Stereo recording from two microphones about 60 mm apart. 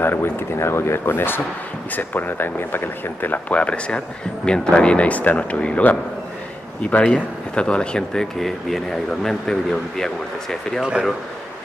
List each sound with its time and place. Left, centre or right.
0.0 s speech: left; by 10.8 s centre
10.8 s speech: centre